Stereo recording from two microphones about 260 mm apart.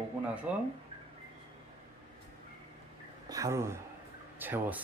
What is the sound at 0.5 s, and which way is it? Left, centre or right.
Speech, centre.